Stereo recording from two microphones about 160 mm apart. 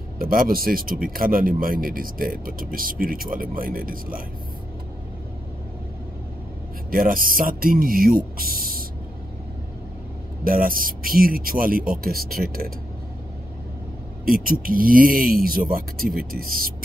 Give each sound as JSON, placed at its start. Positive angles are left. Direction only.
{"t": 0.2, "sound": "speech", "side_deg": -60}
{"t": 6.9, "sound": "speech", "side_deg": -60}
{"t": 10.4, "sound": "speech", "side_deg": -60}
{"t": 14.2, "sound": "speech", "side_deg": -65}